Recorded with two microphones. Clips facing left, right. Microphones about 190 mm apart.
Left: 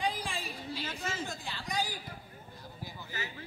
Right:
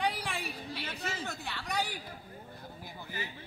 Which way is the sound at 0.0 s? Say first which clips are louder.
Right 1 dB; 65° right (ahead or behind).